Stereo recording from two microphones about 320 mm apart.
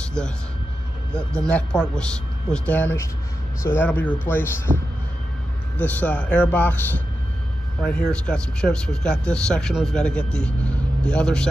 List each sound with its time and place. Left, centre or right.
0.0 s a sound: centre
1.5 s speech: centre
4.7 s speech: centre
5.8 s speech: centre
8.0 s speech: centre